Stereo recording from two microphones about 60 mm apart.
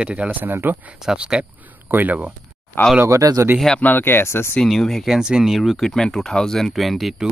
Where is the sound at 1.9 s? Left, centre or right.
Right.